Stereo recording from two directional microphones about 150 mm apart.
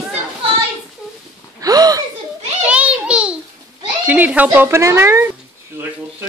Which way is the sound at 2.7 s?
10° right (ahead or behind).